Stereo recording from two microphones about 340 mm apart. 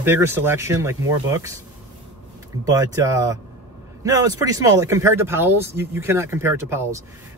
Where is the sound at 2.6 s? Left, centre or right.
Centre.